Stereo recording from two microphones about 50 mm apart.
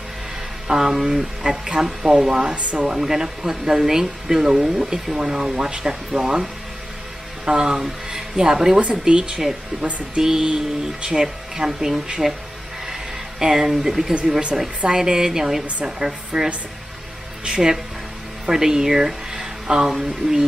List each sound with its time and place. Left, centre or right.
0.7 s speech: centre
2.9 s speech: centre
12.8 s a sound: centre
14.1 s speech: centre
17.5 s speech: centre